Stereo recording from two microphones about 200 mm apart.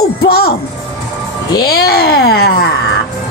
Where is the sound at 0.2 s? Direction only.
50° left (ahead or behind).